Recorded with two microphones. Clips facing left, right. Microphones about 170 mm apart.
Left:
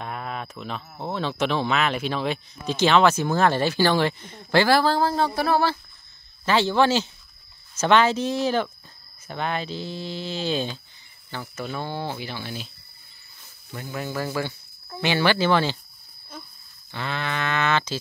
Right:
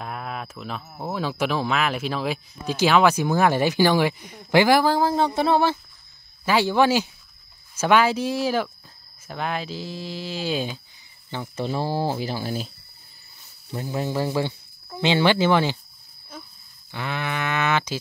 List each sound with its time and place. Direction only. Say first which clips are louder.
0.0 s speech: even; centre (ahead or behind)
11.2 s speech: right 4 dB; 25° right (ahead or behind)
16.9 s speech: right 1 dB; 15° right (ahead or behind)